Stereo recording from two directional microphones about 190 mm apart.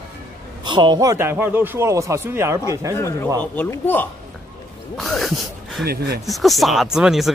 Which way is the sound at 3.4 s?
10° left (ahead or behind).